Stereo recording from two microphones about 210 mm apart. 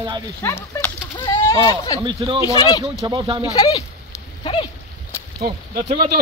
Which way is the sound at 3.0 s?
20° right (ahead or behind).